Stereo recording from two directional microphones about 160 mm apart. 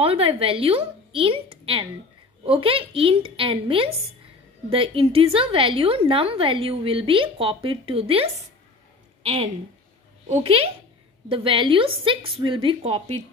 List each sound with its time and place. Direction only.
0.0 s a woman's voice: 35° right (ahead or behind)